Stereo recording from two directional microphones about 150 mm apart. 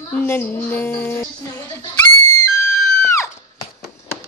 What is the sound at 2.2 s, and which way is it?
Music, 20° left (ahead or behind).